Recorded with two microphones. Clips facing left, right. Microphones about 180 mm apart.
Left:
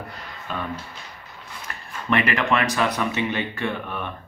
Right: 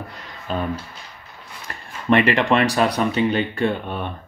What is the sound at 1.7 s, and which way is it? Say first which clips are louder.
Speech: right 6 dB; 30° right (ahead or behind).